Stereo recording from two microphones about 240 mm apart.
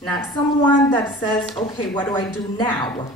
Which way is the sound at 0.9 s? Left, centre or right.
Centre.